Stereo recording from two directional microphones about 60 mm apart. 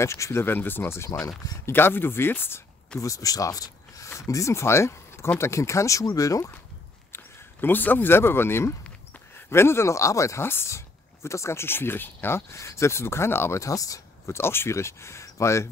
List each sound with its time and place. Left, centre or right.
0.0 s speech: left
3.0 s speech: left
4.3 s speech: left
7.6 s speech: left
10.4 s speech: left
11.2 s speech: left
13.6 s speech: left